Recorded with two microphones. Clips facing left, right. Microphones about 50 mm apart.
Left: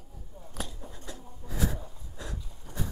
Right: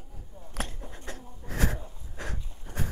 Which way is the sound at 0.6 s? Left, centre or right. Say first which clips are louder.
Right 3 dB; right.